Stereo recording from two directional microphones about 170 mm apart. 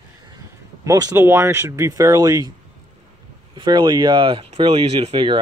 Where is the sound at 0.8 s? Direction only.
20° right (ahead or behind).